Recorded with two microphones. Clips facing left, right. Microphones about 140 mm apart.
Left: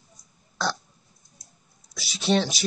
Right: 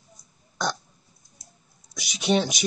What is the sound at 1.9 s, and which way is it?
Speech, 15° right (ahead or behind).